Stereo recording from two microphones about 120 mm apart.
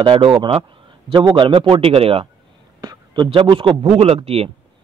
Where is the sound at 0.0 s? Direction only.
50° right (ahead or behind).